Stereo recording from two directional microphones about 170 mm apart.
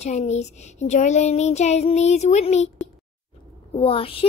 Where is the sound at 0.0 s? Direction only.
40° left (ahead or behind).